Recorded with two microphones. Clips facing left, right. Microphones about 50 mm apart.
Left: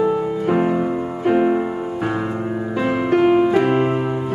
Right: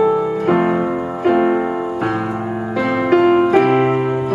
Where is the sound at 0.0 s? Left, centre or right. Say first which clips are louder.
Right 4 dB; right.